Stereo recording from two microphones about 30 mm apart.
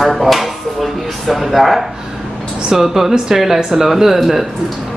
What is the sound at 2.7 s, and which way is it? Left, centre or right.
Speech, centre.